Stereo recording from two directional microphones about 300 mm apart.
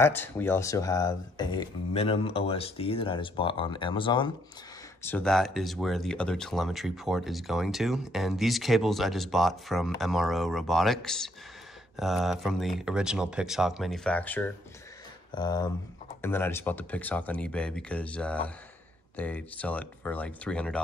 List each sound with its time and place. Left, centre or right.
0.0 s speech: centre
5.0 s speech: centre